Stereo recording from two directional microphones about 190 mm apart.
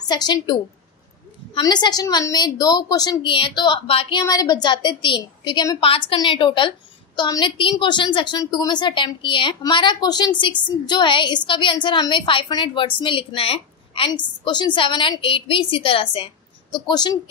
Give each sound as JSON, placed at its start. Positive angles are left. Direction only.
{"t": 0.1, "sound": "a woman's voice", "side_deg": 25}
{"t": 4.2, "sound": "a woman's voice", "side_deg": 20}